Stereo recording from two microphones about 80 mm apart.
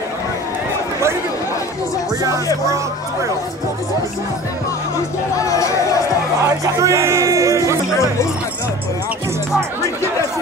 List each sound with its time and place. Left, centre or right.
5.4 s speech: left
6.4 s speech: right